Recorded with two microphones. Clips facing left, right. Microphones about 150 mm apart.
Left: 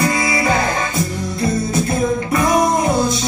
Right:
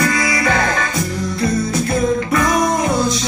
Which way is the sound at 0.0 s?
25° left (ahead or behind).